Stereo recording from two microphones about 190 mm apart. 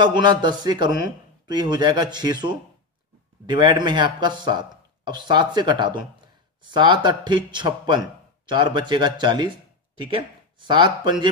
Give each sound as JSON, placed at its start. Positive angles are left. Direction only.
{"t": 0.0, "sound": "speech", "side_deg": -25}